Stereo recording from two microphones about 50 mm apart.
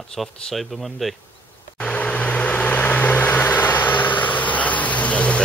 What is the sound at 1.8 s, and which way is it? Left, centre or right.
Vehicle, left.